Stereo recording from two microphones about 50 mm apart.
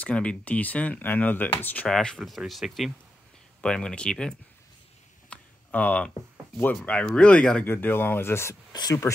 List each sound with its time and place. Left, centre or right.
0.0 s speech: left
0.6 s speech: left
1.9 s speech: centre
2.1 s speech: centre
3.6 s speech: centre
5.3 s a sound: left
6.7 s speech: left
7.6 s speech: left